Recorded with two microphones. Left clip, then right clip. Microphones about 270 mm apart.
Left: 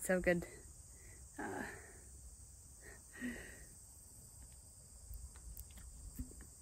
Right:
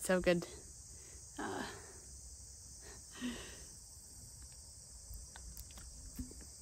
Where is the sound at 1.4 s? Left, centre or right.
Centre.